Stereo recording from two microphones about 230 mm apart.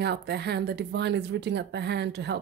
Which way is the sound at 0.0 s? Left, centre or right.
Right.